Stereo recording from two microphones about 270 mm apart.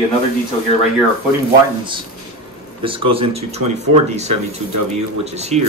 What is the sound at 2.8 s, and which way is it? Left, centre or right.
Speech, centre.